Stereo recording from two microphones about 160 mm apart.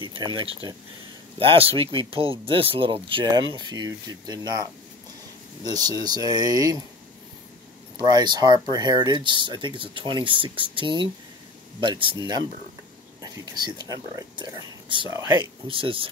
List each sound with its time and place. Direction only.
0.0 s speech: 30° right (ahead or behind)
8.0 s speech: 25° right (ahead or behind)
15.0 s speech: 20° right (ahead or behind)
15.7 s speech: 35° right (ahead or behind)